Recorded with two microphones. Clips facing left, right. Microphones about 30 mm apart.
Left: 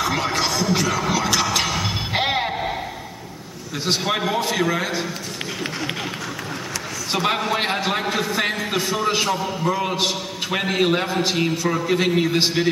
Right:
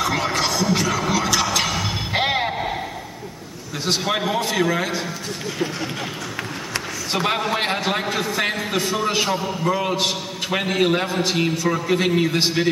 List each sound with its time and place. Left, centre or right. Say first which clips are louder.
0.0 s a sound: even; centre
3.8 s a man's voice: even; centre
7.1 s a man's voice: left 1 dB; centre